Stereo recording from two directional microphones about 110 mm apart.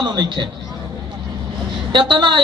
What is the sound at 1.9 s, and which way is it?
Speech, 45° right (ahead or behind).